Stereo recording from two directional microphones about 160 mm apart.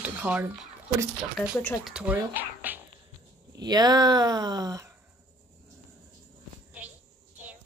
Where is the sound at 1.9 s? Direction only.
5° right (ahead or behind).